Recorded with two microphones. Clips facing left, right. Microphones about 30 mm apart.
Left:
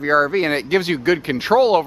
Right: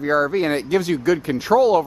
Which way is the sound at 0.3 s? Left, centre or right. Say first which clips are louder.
Left 1 dB; left.